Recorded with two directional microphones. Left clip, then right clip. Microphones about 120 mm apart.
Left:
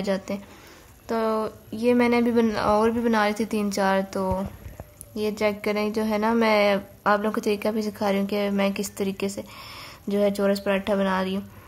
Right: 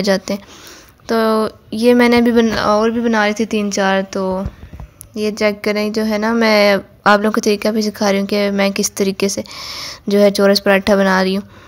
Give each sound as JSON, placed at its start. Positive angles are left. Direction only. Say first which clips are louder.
{"t": 0.0, "sound": "a woman's voice", "louder": "right 11 dB", "side_deg": -40}
{"t": 2.5, "sound": "speech", "louder": "right 7 dB", "side_deg": -20}
{"t": 3.0, "sound": "a woman's voice", "louder": "right 7 dB", "side_deg": -35}
{"t": 7.3, "sound": "a woman's voice", "louder": "right 9 dB", "side_deg": -25}